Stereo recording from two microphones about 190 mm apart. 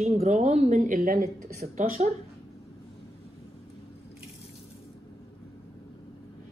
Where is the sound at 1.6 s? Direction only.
40° right (ahead or behind).